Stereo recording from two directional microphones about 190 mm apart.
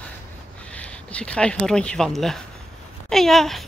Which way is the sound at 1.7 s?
5° left (ahead or behind).